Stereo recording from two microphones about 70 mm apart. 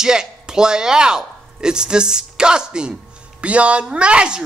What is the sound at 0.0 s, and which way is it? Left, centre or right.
Speech, centre.